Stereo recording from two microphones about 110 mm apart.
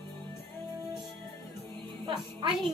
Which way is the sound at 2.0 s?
45° right (ahead or behind).